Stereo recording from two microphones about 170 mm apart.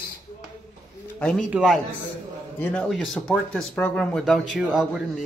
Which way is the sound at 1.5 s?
5° right (ahead or behind).